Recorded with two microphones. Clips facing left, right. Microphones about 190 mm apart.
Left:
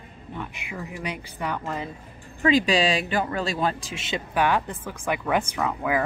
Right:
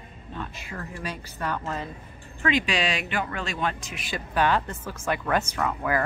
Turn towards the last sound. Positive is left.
turn(degrees=10)  # may be behind; listen again after turning